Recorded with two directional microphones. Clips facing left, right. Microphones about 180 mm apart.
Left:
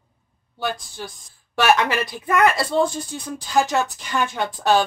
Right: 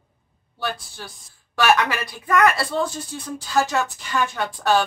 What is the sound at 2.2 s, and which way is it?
Speech, 25° left (ahead or behind).